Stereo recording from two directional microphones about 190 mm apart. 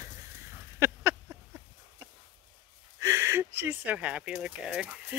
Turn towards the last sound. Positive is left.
turn(degrees=-10)  # may be behind; listen again after turning